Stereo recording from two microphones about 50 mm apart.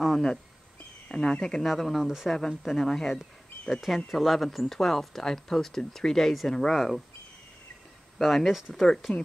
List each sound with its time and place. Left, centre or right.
0.0 s a sound: centre
1.1 s speech: centre
1.7 s speech: centre
3.8 s speech: centre
8.2 s speech: centre